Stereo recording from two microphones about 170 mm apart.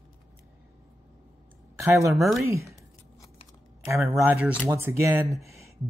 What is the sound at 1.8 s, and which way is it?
Speech, 20° right (ahead or behind).